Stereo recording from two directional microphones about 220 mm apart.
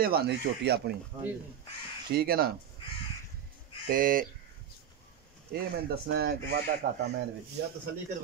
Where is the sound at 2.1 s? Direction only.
45° right (ahead or behind).